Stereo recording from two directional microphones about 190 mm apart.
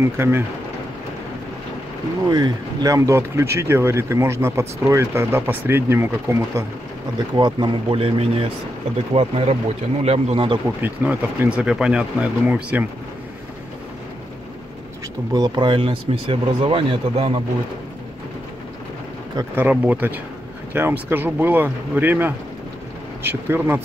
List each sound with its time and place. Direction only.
0.0 s speech: 15° right (ahead or behind)
2.2 s speech: 20° right (ahead or behind)
10.8 s speech: 10° right (ahead or behind)
15.3 s speech: 25° right (ahead or behind)
19.3 s speech: 10° right (ahead or behind)